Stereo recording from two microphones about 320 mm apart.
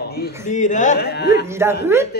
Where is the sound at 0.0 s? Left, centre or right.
Left.